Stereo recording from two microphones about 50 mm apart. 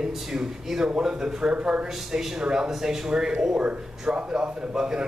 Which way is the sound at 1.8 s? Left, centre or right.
Centre.